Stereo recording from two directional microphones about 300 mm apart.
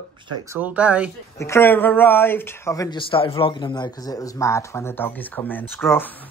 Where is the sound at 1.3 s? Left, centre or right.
Centre.